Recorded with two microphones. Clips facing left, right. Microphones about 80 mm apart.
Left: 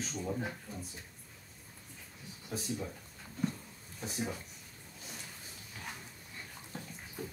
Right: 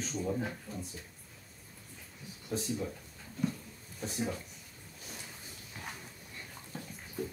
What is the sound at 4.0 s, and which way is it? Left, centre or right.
Speech, centre.